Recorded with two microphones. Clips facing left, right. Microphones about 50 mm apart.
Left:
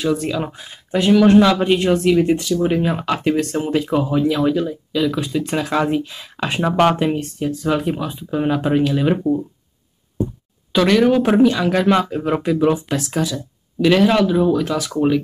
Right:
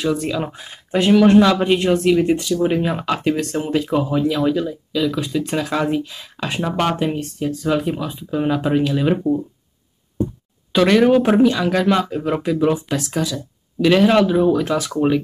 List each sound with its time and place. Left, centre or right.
0.0 s speech: centre
0.5 s speech: centre
1.4 s speech: centre
4.4 s speech: centre
6.3 s speech: left
7.1 s speech: centre
10.7 s speech: centre